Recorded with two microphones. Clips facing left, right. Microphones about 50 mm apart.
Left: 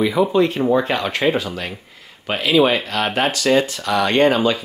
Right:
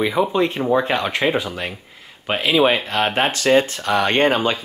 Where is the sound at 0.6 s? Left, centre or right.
Centre.